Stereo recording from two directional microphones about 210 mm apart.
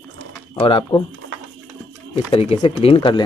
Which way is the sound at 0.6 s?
25° left (ahead or behind).